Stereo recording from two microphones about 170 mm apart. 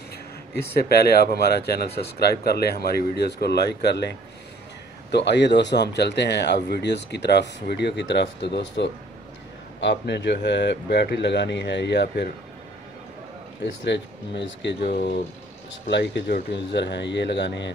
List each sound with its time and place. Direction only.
0.6 s speech: 70° left (ahead or behind)
5.1 s a man's voice: 90° left
13.8 s a man's voice: 90° left; by 15.2 s 70° left (ahead or behind)
15.9 s a man's voice: 90° left